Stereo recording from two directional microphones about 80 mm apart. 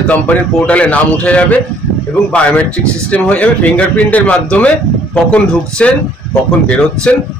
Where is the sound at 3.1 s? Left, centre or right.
Centre.